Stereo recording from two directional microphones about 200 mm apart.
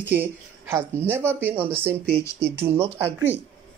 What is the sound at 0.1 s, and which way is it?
Speech, 10° right (ahead or behind).